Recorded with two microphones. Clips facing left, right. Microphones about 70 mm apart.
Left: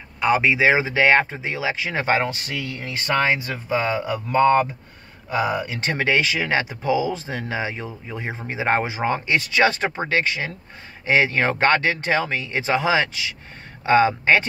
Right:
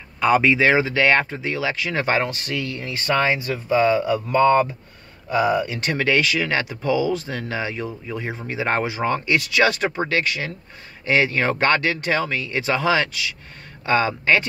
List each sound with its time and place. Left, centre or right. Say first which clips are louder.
0.2 s speech: right 1 dB; centre; by 4.4 s left
5.7 s speech: right 1 dB; left